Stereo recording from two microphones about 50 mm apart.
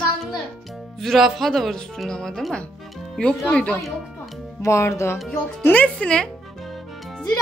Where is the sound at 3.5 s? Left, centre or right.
Left.